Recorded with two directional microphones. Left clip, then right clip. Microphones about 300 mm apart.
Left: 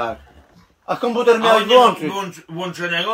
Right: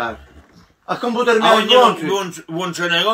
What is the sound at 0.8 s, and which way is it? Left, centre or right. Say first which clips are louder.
Speech: left 1 dB; left.